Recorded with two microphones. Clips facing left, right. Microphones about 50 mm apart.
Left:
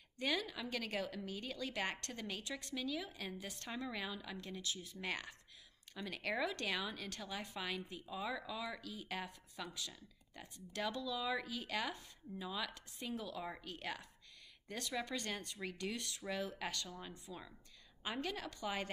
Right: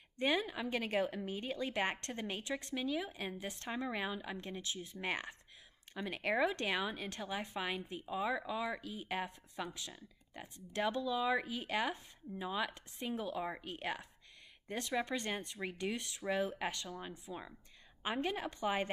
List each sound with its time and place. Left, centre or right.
0.2 s a woman's voice: right